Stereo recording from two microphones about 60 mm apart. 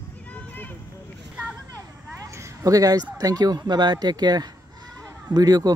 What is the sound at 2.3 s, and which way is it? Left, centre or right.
Speech, right.